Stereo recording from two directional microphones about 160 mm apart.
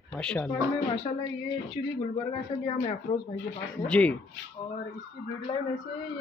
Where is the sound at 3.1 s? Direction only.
30° left (ahead or behind).